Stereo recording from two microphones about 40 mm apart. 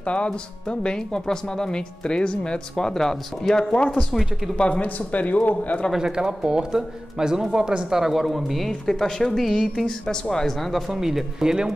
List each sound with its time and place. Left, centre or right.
0.0 s speech: left; by 3.6 s centre
3.7 s speech: left
5.9 s speech: centre
8.6 s speech: centre
10.7 s speech: centre